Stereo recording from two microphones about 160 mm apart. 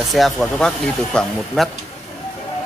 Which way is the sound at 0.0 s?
Centre (ahead or behind).